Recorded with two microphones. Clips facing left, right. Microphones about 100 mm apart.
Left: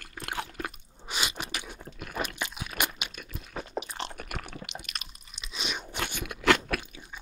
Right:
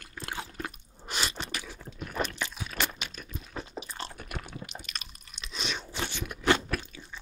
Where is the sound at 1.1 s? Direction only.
5° left (ahead or behind).